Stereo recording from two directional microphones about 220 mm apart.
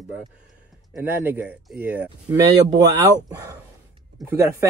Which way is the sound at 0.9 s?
10° right (ahead or behind).